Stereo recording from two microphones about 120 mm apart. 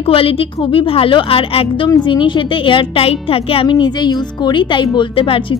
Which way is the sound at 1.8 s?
40° left (ahead or behind).